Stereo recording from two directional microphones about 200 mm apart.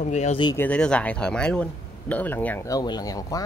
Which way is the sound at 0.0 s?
35° left (ahead or behind).